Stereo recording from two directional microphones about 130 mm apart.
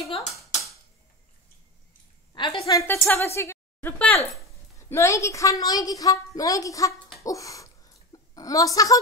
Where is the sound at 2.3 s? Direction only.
35° left (ahead or behind).